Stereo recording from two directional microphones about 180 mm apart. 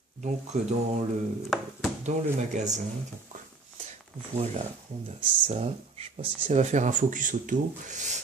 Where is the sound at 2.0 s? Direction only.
40° right (ahead or behind).